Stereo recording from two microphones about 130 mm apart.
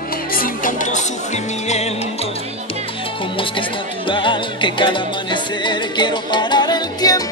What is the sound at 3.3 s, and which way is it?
Music, 40° left (ahead or behind).